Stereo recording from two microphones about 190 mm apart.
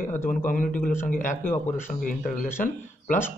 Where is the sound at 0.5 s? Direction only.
45° left (ahead or behind).